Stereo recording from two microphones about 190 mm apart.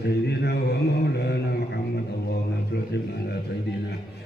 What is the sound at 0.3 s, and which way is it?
Mantra, 60° left (ahead or behind).